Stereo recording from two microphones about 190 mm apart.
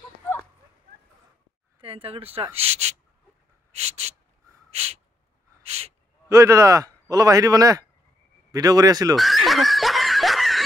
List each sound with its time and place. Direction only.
1.8 s speech: 30° right (ahead or behind)
4.6 s gasp: 35° right (ahead or behind)
5.6 s a sound: 35° right (ahead or behind)
6.2 s a man's voice: 15° right (ahead or behind)
9.1 s snicker: centre (ahead or behind)